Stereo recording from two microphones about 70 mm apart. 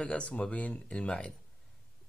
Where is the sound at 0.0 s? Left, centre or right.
Centre.